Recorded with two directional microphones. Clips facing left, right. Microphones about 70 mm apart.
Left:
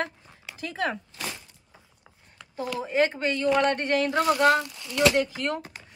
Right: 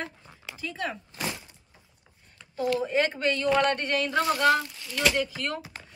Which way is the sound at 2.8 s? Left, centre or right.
Centre.